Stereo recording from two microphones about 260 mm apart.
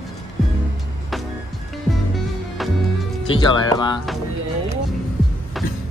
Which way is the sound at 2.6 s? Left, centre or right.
Centre.